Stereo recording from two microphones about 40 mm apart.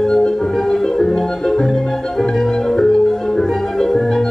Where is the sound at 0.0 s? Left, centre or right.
Centre.